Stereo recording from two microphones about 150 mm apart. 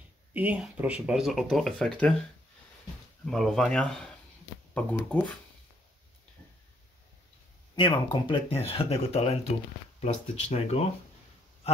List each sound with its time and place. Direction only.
0.3 s speech: 10° right (ahead or behind); by 2.1 s 5° left (ahead or behind)
3.3 s speech: centre (ahead or behind)
7.7 s speech: 30° left (ahead or behind)